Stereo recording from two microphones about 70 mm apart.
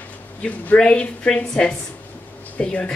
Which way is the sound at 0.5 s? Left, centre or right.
Centre.